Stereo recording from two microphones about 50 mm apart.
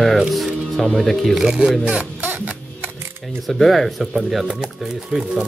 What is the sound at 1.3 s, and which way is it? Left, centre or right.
Speech, centre.